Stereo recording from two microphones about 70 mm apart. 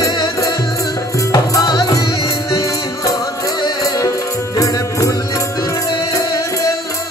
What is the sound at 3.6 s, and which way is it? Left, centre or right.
Music, left.